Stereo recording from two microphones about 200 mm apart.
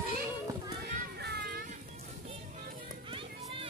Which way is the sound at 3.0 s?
25° right (ahead or behind).